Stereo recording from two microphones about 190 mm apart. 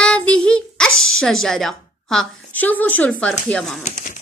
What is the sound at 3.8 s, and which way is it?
Speech, 45° left (ahead or behind).